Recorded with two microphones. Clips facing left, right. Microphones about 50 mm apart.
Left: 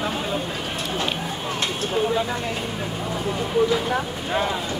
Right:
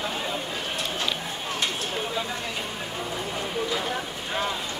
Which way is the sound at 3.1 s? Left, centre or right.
Centre.